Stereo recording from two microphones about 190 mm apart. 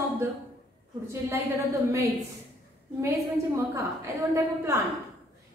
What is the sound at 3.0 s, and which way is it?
A woman's voice, 15° right (ahead or behind).